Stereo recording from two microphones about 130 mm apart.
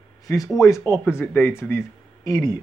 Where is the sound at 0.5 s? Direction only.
25° left (ahead or behind).